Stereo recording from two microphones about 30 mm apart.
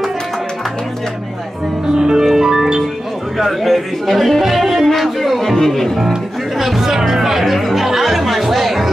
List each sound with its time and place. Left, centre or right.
1.9 s music: right
3.3 s speech: centre
4.4 s music: centre
4.8 s a sound: centre
5.7 s speech: centre
6.6 s music: centre